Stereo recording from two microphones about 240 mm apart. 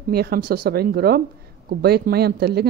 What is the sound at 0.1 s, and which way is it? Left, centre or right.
A woman's voice, right.